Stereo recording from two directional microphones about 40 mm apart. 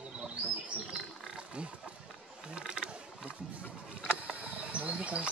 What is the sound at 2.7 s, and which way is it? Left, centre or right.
Mechanisms, right.